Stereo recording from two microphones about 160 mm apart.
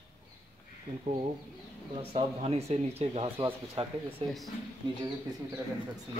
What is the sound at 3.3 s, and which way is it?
Speech, 15° right (ahead or behind).